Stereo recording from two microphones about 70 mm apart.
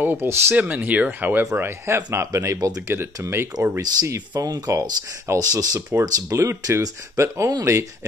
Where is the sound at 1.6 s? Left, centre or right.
Right.